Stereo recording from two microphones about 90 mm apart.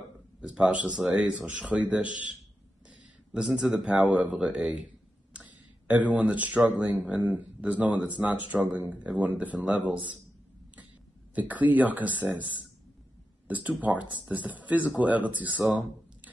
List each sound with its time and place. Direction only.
0.4 s speech: 10° right (ahead or behind)
5.3 s a sound: 15° right (ahead or behind)
6.8 s speech: 15° right (ahead or behind)
11.3 s speech: 20° right (ahead or behind)
13.5 s speech: 15° right (ahead or behind)